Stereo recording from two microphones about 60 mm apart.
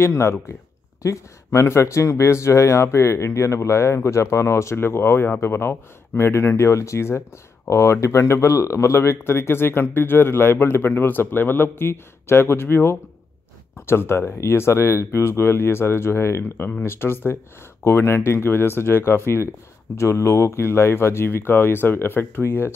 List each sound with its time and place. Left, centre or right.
0.0 s a man's voice: left